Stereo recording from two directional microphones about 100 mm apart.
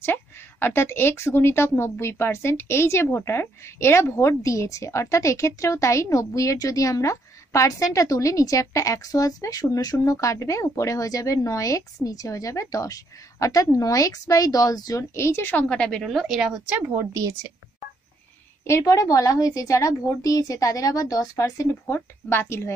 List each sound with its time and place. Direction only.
0.0 s speech: 20° left (ahead or behind)
15.7 s a woman's voice: 10° left (ahead or behind); by 16.7 s 10° right (ahead or behind)
17.0 s a woman's voice: 35° right (ahead or behind)
18.6 s speech: 30° left (ahead or behind)